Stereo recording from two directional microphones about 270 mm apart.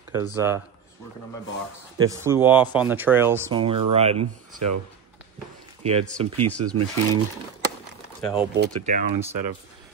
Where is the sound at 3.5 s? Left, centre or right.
Centre.